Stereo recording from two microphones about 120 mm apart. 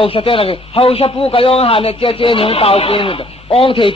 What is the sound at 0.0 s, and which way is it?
A man's voice, 50° left (ahead or behind).